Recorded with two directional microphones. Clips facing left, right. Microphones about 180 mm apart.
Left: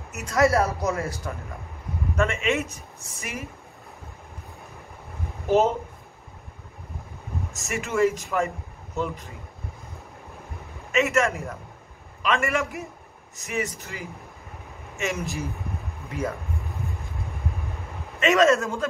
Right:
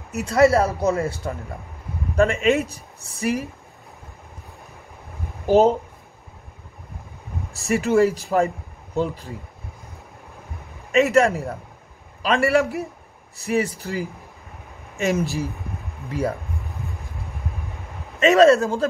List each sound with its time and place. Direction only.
0.1 s speech: 30° right (ahead or behind)
5.5 s speech: 35° right (ahead or behind)
7.5 s speech: 35° right (ahead or behind)
10.9 s speech: 35° right (ahead or behind)
18.2 s speech: 35° right (ahead or behind)